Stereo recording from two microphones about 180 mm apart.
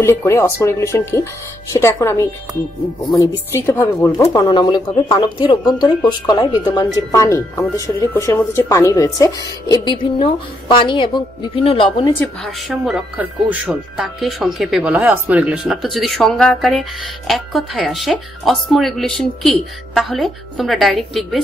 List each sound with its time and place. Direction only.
0.0 s speech: 15° left (ahead or behind)
12.4 s speech: centre (ahead or behind)